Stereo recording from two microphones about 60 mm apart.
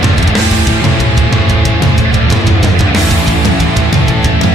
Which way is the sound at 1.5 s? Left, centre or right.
Centre.